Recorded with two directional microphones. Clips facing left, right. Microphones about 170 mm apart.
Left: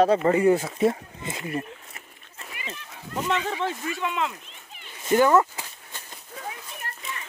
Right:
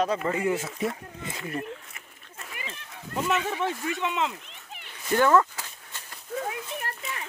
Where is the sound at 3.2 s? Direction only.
5° right (ahead or behind).